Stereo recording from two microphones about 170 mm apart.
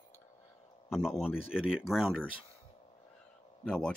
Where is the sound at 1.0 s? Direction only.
5° right (ahead or behind).